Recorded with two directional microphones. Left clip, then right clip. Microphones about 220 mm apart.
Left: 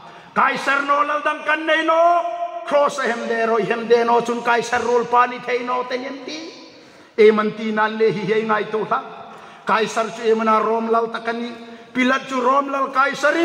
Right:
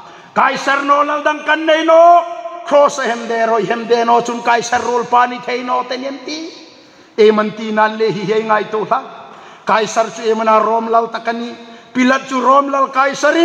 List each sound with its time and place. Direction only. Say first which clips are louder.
0.3 s a man's voice: right 4 dB; 40° right (ahead or behind)
7.2 s a man's voice: right 3 dB; 40° right (ahead or behind)